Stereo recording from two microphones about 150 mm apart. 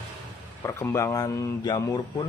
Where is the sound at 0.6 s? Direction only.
20° left (ahead or behind).